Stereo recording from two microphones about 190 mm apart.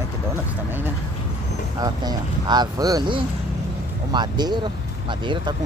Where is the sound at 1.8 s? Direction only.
20° right (ahead or behind).